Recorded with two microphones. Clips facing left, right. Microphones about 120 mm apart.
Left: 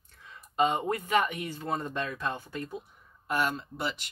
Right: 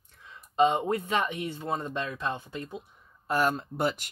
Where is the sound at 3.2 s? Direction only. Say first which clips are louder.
Right 3 dB; 40° right (ahead or behind).